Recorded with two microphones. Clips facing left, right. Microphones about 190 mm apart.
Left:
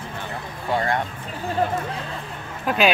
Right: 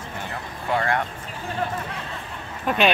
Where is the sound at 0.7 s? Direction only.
20° left (ahead or behind).